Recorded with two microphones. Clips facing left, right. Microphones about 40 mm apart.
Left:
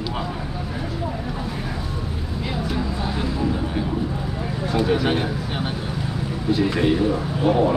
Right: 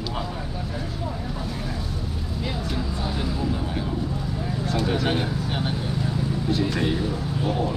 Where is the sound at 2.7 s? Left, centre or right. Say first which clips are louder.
Left 3 dB; centre.